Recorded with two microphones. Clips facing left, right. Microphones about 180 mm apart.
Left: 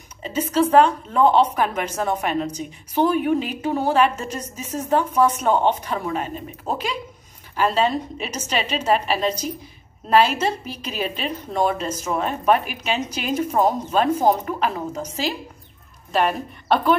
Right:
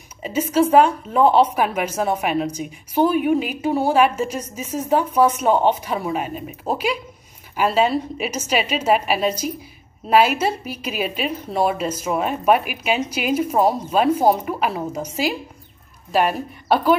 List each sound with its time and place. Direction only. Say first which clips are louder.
0.2 s a woman's voice: right 2 dB; 10° right (ahead or behind)